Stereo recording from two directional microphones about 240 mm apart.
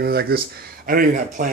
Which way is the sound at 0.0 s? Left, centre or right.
Right.